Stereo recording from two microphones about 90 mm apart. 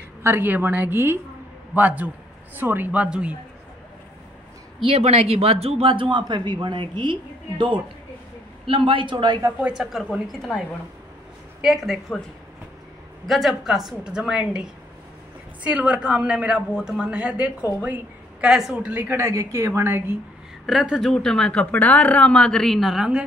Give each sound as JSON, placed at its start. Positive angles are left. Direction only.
{"t": 0.2, "sound": "a woman's voice", "side_deg": -25}
{"t": 4.8, "sound": "a man's voice", "side_deg": -90}
{"t": 8.6, "sound": "a man's voice", "side_deg": -75}
{"t": 9.1, "sound": "speech", "side_deg": -50}
{"t": 9.6, "sound": "a man's voice", "side_deg": -10}
{"t": 11.6, "sound": "a woman's voice", "side_deg": 0}
{"t": 13.3, "sound": "a man's voice", "side_deg": 0}
{"t": 17.8, "sound": "a sound", "side_deg": -15}
{"t": 18.5, "sound": "a man's voice", "side_deg": -5}
{"t": 18.9, "sound": "a woman's voice", "side_deg": -25}
{"t": 19.2, "sound": "a woman's voice", "side_deg": -35}
{"t": 20.6, "sound": "a woman's voice", "side_deg": 0}